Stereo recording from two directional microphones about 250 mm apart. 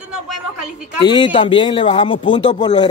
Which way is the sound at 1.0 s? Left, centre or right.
Centre.